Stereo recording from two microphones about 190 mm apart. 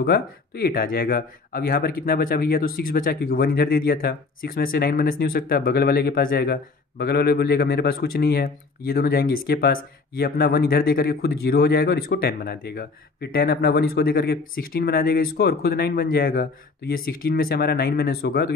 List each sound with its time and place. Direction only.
0.0 s speech: 55° left (ahead or behind)